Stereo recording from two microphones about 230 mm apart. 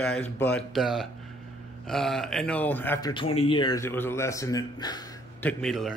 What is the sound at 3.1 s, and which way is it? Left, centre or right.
Speech, left.